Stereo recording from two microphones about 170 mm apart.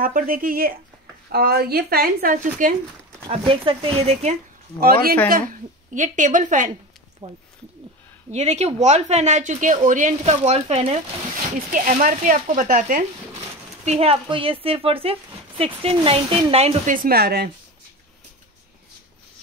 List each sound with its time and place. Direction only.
0.0 s speech: 55° right (ahead or behind)
3.3 s speech: 30° right (ahead or behind)
5.5 s speech: 50° right (ahead or behind)
11.5 s speech: 50° right (ahead or behind)
13.8 s speech: 35° right (ahead or behind)
16.9 s speech: 60° right (ahead or behind)